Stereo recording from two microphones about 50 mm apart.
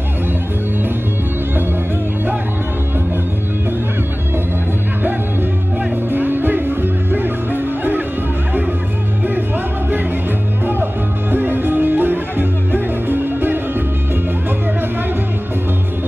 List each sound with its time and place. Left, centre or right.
6.1 s music: right
11.3 s music: right